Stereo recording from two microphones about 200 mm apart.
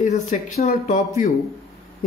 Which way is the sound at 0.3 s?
35° left (ahead or behind).